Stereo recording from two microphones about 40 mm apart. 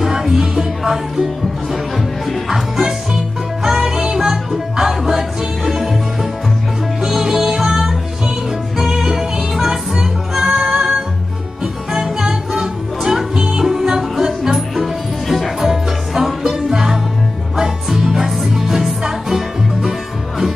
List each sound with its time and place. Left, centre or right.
0.0 s music: centre
7.0 s music: centre
15.2 s music: centre
18.2 s music: centre